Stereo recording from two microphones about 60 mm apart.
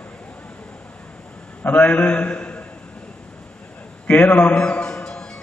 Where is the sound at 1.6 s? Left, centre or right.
Left.